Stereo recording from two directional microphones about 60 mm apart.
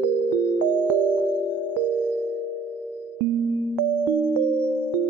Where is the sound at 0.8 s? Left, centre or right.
Right.